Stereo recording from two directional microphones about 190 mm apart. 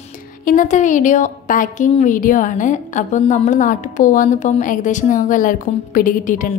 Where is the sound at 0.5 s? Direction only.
40° left (ahead or behind).